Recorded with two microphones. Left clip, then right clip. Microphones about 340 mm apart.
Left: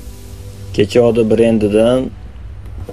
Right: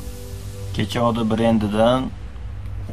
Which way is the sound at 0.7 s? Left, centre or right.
Right.